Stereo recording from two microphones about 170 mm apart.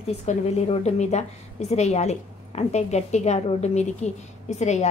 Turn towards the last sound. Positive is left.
turn(degrees=40)  # may be behind; listen again after turning